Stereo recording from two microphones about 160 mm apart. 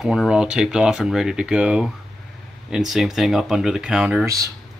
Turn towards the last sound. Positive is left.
turn(degrees=-5)  # may be behind; listen again after turning